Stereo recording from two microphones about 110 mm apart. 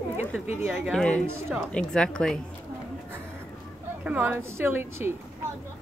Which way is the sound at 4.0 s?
15° right (ahead or behind).